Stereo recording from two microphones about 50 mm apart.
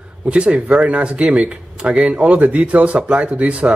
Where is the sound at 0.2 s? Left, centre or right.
Right.